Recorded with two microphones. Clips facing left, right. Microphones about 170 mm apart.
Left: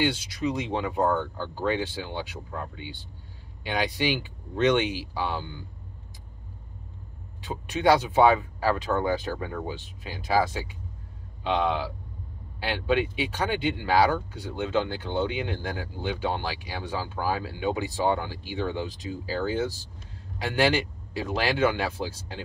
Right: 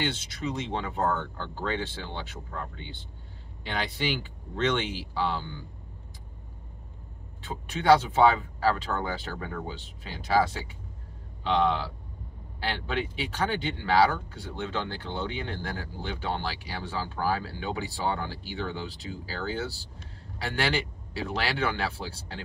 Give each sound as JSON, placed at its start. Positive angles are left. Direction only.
{"t": 0.0, "sound": "speech", "side_deg": 10}
{"t": 7.4, "sound": "speech", "side_deg": 15}
{"t": 21.5, "sound": "speech", "side_deg": 15}